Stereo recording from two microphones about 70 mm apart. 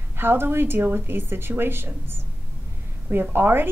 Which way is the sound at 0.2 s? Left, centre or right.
Right.